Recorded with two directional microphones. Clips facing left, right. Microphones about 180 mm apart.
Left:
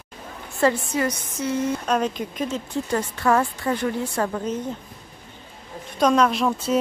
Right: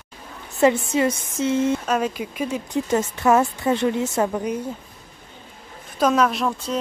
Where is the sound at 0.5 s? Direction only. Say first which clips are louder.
Right 3 dB; 20° right (ahead or behind).